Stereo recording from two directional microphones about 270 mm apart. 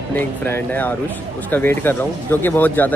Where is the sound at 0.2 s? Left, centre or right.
Centre.